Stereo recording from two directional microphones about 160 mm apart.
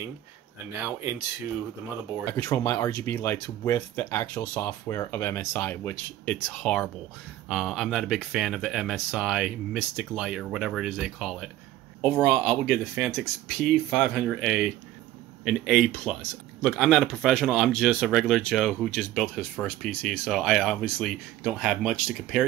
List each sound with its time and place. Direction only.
2.3 s speech: 15° left (ahead or behind); by 15.9 s 5° right (ahead or behind)
15.9 s speech: 5° left (ahead or behind)